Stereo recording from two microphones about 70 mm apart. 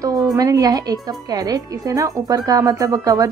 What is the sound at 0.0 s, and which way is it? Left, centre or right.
A woman's voice, right.